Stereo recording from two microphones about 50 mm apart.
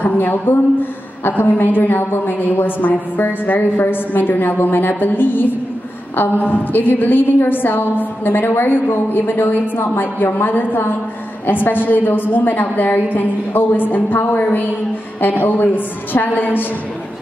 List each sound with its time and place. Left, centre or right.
0.0 s a woman's voice: left